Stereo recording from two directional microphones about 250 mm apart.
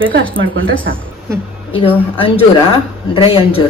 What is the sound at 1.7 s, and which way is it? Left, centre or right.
A woman's voice, left.